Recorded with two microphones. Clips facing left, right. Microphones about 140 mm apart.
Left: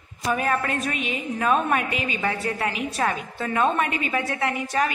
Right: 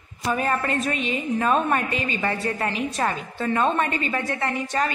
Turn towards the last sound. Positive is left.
turn(degrees=10)  # may be behind; listen again after turning